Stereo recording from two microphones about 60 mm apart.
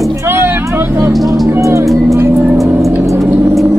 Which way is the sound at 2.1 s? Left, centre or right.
Right.